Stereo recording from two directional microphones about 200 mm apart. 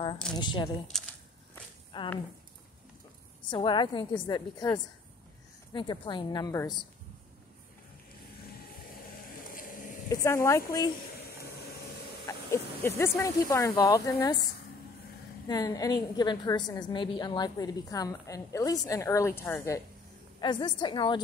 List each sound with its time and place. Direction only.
0.4 s a woman's voice: 25° left (ahead or behind)
0.9 s a sound: centre (ahead or behind)
1.9 s speech: 25° left (ahead or behind)
3.4 s a woman's voice: 25° left (ahead or behind)
9.6 s a sound: 45° left (ahead or behind)
10.0 s a woman's voice: 15° left (ahead or behind)
12.3 s speech: 15° left (ahead or behind)
15.4 s a woman's voice: 20° left (ahead or behind)